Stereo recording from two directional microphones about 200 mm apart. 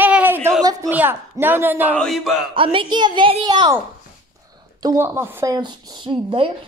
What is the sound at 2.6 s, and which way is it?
Speech, 25° right (ahead or behind).